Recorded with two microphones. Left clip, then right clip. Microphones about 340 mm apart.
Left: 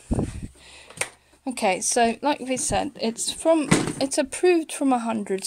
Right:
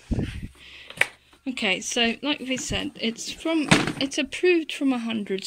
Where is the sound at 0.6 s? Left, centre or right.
Centre.